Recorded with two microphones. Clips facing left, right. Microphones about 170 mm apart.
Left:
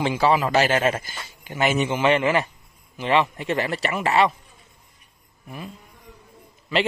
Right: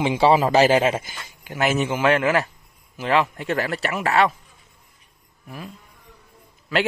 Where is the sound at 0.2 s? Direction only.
30° right (ahead or behind).